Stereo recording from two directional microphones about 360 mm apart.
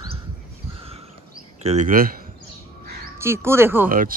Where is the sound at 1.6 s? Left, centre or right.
Centre.